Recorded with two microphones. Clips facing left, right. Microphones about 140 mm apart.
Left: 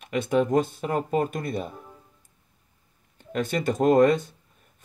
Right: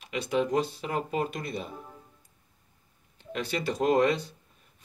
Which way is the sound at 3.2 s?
50° left (ahead or behind).